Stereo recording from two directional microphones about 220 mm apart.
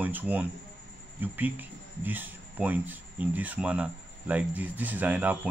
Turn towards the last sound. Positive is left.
turn(degrees=-5)  # may be behind; listen again after turning